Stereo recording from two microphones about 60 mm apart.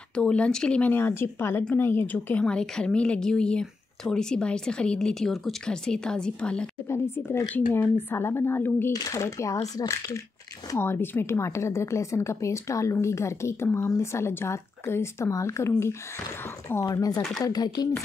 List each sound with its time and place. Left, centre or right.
0.1 s speech: centre
0.8 s speech: left
2.4 s speech: centre
6.9 s a woman's voice: left
8.9 s speech: left
9.2 s speech: left
10.8 s a woman's voice: left
13.8 s speech: left
14.2 s a woman's voice: left
16.8 s speech: left